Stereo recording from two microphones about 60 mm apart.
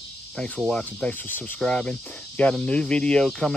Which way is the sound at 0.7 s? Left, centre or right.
Centre.